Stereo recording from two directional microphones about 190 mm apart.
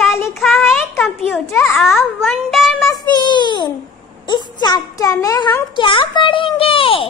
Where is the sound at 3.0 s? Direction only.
25° left (ahead or behind).